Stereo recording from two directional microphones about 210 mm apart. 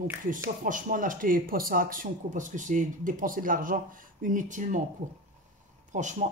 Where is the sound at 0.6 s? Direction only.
40° right (ahead or behind).